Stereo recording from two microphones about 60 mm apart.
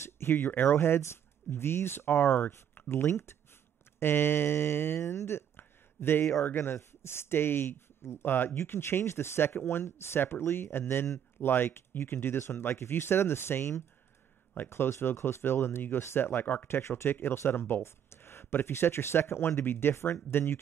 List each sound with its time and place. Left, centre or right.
0.0 s speech: left
3.0 s speech: left
5.6 s a sound: left
6.4 s speech: left